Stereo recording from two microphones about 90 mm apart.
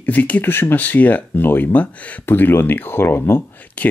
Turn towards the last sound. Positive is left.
turn(degrees=20)  # may be behind; listen again after turning